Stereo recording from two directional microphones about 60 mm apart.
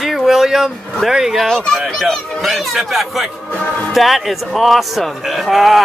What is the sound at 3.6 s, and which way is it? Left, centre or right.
Speech, left.